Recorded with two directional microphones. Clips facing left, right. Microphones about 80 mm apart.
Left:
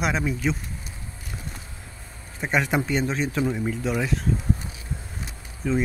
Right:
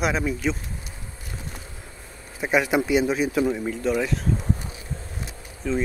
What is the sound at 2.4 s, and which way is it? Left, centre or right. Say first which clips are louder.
Speech: right 2 dB; centre.